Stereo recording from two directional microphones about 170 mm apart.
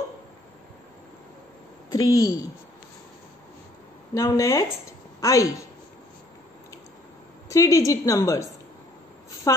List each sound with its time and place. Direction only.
1.9 s a woman's voice: 20° left (ahead or behind)
4.1 s a woman's voice: 20° left (ahead or behind)
7.4 s a woman's voice: 20° left (ahead or behind)